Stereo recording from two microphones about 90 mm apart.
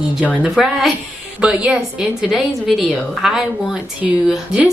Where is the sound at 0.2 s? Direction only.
15° right (ahead or behind).